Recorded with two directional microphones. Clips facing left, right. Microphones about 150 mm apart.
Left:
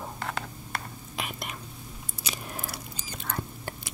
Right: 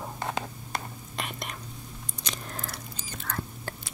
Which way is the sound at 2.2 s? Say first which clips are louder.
Left 1 dB; 10° left (ahead or behind).